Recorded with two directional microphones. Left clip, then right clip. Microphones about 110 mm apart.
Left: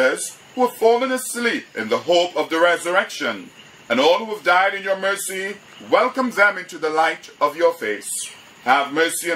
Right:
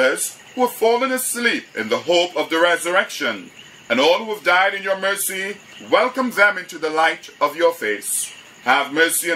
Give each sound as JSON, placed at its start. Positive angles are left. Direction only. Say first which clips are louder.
{"t": 0.0, "sound": "speech", "louder": "right 1 dB", "side_deg": 0}